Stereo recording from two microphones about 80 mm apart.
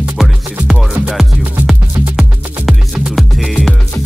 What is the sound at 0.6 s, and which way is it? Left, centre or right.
Music, centre.